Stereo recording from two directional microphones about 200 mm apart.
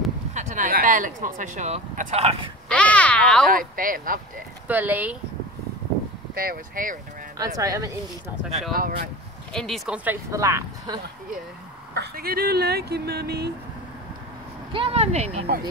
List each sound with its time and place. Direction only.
0.3 s speech: 40° right (ahead or behind)
2.7 s speech: 5° left (ahead or behind)
3.4 s speech: 45° right (ahead or behind)
4.6 s speech: 10° right (ahead or behind)
6.3 s speech: 45° right (ahead or behind)
7.3 s speech: 15° right (ahead or behind)
8.7 s speech: 45° right (ahead or behind)
9.5 s speech: centre (ahead or behind); by 11.0 s 15° right (ahead or behind)
11.9 s speech: 50° right (ahead or behind)
14.7 s speech: 30° right (ahead or behind)